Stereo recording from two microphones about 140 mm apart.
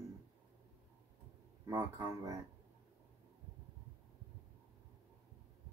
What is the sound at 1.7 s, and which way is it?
Speech, 25° right (ahead or behind).